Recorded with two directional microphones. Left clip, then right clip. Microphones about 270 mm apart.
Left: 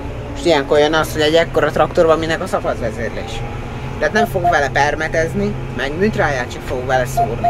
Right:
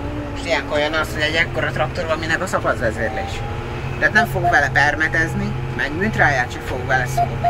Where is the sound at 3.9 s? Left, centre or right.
Centre.